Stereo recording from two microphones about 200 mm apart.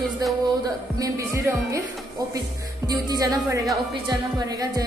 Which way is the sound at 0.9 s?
15° right (ahead or behind).